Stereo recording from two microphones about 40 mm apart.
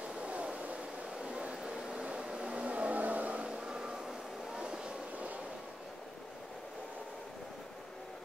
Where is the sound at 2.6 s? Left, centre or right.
Right.